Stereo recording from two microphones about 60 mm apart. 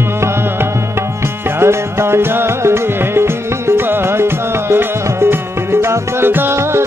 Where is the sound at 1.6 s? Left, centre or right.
Right.